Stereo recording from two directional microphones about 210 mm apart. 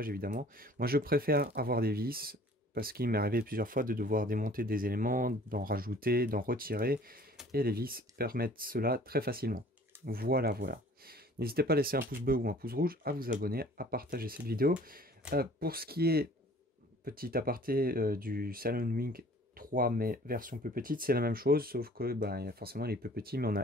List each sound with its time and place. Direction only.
0.0 s speech: 45° right (ahead or behind)